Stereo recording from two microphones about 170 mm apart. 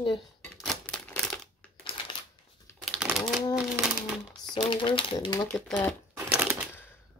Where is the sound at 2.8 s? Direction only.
Centre (ahead or behind).